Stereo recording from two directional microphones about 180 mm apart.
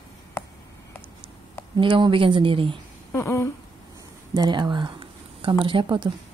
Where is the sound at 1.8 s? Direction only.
25° right (ahead or behind).